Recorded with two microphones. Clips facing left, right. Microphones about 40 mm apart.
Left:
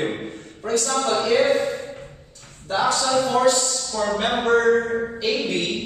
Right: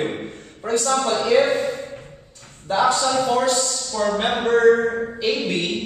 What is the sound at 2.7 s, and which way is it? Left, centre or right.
Speech, right.